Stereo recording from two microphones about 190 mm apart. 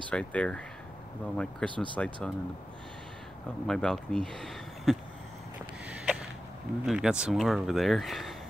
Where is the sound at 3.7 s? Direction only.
5° left (ahead or behind).